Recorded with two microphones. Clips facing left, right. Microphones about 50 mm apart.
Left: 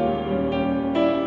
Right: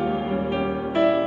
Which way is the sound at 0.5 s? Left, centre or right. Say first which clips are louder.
Even; centre.